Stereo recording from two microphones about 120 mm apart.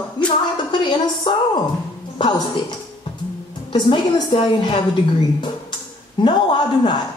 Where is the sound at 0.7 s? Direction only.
40° left (ahead or behind).